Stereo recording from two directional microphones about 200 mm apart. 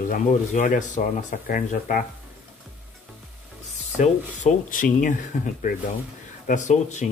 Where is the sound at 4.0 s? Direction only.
40° left (ahead or behind).